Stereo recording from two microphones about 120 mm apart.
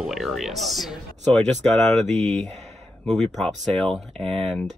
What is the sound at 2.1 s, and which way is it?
Speech, 70° right (ahead or behind).